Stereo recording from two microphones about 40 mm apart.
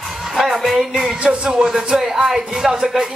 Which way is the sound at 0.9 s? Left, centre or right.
Centre.